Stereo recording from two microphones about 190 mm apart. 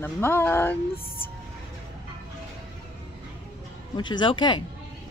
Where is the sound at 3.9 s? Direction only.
25° left (ahead or behind).